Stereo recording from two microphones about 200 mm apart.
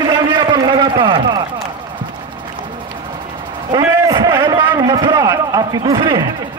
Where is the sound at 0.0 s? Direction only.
20° right (ahead or behind).